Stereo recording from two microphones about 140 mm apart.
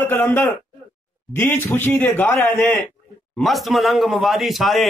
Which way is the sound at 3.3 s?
Centre (ahead or behind).